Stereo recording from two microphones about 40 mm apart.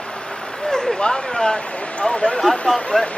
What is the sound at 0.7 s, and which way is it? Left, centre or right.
Speech, centre.